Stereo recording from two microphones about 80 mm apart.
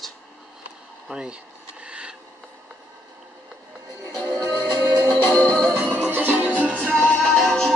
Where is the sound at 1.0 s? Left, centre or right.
Centre.